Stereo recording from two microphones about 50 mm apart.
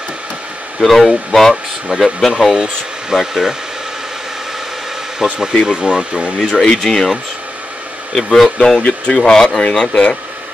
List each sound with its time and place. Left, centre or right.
0.7 s speech: centre
1.5 s speech: centre
5.2 s speech: centre
6.6 s speech: centre